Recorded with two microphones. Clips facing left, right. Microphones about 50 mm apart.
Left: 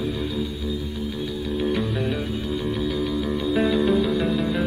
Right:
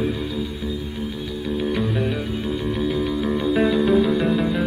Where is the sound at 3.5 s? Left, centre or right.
Centre.